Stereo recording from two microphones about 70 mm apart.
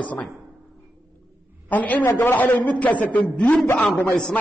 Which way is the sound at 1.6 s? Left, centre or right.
Left.